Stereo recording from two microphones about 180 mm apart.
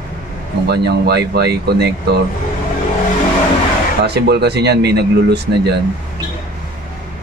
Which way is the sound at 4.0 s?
65° right (ahead or behind).